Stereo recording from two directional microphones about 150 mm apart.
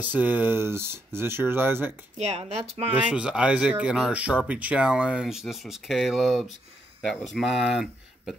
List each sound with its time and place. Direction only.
0.0 s speech: 10° right (ahead or behind)
2.1 s speech: 45° right (ahead or behind)
2.9 s speech: 10° right (ahead or behind)